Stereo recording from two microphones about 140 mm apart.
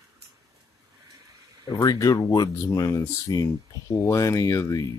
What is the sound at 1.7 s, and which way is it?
Speech, 25° left (ahead or behind).